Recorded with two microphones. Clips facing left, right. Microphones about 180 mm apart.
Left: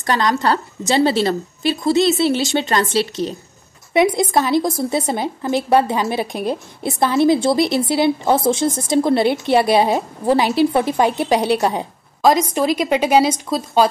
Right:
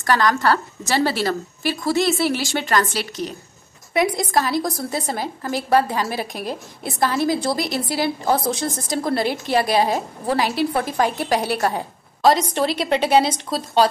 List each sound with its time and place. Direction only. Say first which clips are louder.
0.0 s a woman's voice: left 1 dB; 20° left (ahead or behind)